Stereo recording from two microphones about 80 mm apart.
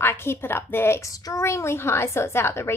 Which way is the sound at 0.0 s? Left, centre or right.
Left.